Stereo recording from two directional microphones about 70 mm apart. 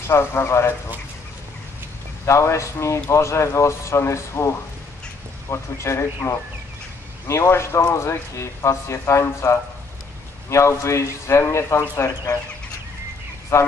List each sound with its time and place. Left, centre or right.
0.1 s speech: left
2.2 s speech: left
13.5 s speech: left